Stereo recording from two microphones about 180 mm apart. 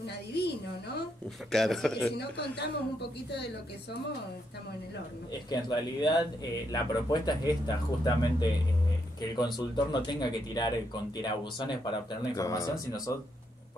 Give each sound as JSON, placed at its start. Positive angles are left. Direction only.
{"t": 0.0, "sound": "a sound", "side_deg": 65}
{"t": 1.5, "sound": "a man's voice", "side_deg": 0}
{"t": 2.1, "sound": "a man's voice", "side_deg": 65}
{"t": 5.5, "sound": "speech", "side_deg": 25}